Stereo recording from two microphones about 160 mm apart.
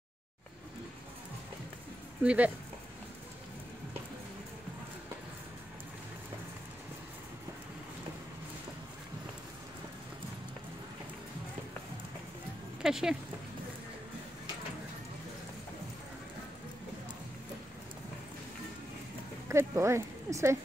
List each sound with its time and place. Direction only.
2.2 s speech: 10° right (ahead or behind)
12.8 s speech: centre (ahead or behind)
19.5 s speech: 15° right (ahead or behind)